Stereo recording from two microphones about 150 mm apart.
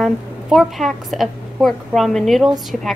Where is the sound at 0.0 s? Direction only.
Centre (ahead or behind).